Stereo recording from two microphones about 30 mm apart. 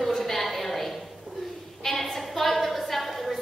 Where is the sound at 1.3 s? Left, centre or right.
Right.